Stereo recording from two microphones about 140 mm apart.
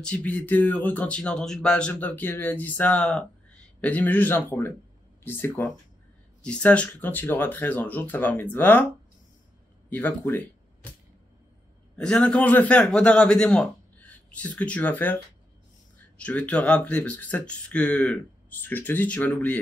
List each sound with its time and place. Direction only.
0.0 s speech: 10° left (ahead or behind)
9.8 s speech: 15° left (ahead or behind)
12.0 s speech: 5° left (ahead or behind)
16.2 s speech: 10° left (ahead or behind)